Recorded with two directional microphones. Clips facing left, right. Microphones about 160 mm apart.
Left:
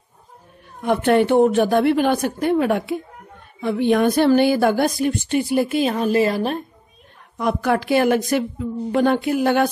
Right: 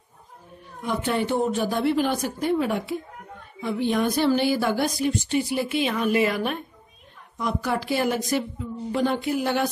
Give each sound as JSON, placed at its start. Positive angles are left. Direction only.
{"t": 0.8, "sound": "speech", "side_deg": 65}
{"t": 7.3, "sound": "speech", "side_deg": 60}